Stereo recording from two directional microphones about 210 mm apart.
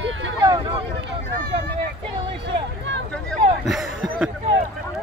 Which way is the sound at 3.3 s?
Centre (ahead or behind).